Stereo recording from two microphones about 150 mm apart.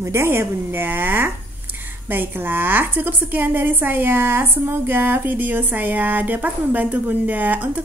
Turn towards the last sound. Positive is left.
turn(degrees=-10)  # may be behind; listen again after turning